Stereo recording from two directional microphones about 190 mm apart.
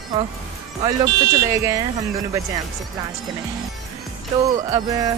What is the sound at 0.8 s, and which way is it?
Speech, 20° right (ahead or behind).